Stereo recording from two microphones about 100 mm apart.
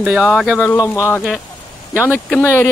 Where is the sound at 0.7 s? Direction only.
35° left (ahead or behind).